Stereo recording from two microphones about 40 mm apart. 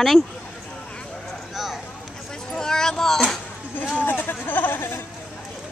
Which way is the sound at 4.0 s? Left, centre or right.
Left.